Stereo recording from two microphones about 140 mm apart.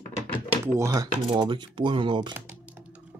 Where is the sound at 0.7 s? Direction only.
20° right (ahead or behind).